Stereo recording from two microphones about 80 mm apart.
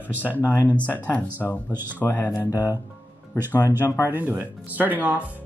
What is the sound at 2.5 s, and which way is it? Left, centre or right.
Speech, left.